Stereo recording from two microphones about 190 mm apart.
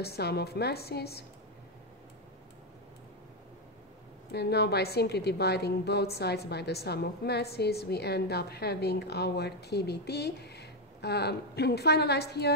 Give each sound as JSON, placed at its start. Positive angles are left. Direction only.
{"t": 0.0, "sound": "a woman's voice", "side_deg": 55}
{"t": 4.3, "sound": "a woman's voice", "side_deg": 60}